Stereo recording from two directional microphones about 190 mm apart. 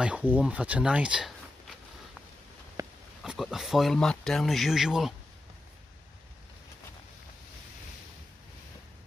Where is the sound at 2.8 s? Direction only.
20° right (ahead or behind).